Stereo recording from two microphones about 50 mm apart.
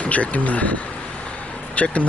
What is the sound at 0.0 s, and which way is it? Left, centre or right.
Speech, left.